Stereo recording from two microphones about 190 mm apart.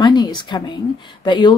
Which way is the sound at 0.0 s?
20° left (ahead or behind).